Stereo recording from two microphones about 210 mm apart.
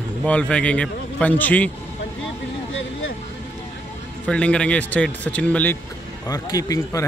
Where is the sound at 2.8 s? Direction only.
65° left (ahead or behind).